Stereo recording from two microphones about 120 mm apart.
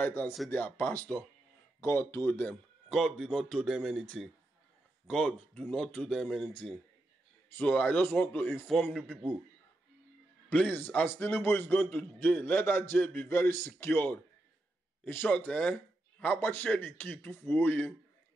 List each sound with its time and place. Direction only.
0.0 s a man's voice: 15° left (ahead or behind)
2.9 s speech: 5° left (ahead or behind)
5.0 s a man's voice: 5° left (ahead or behind)
7.4 s a man's voice: 15° left (ahead or behind)
8.7 s speech: centre (ahead or behind)
10.5 s a man's voice: 15° left (ahead or behind)